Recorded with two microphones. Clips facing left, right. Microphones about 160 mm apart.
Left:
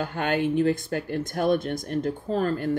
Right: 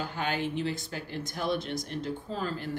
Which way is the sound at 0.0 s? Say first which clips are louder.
Left 6 dB; 55° left (ahead or behind).